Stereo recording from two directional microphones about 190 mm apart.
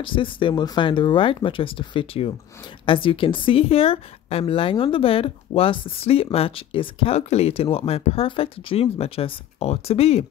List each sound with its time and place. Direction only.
0.0 s a woman's voice: 25° left (ahead or behind)